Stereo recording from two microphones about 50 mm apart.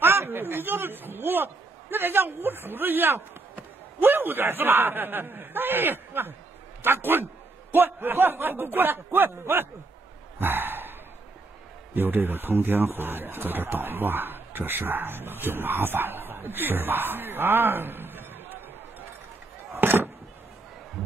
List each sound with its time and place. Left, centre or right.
0.0 s a man's voice: right
10.4 s gasp: right
11.9 s speech: right
19.7 s a sound: right